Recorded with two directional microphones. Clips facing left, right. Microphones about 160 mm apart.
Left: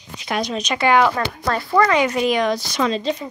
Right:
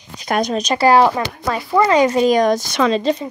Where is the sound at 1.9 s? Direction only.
35° right (ahead or behind).